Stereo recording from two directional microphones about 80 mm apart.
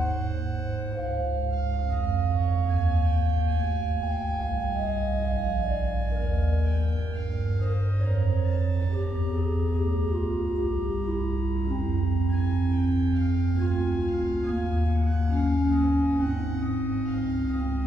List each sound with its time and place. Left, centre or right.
12.7 s organ: left
13.6 s organ: centre
15.4 s organ: centre